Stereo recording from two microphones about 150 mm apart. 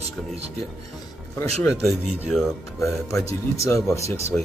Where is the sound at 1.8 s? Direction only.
5° right (ahead or behind).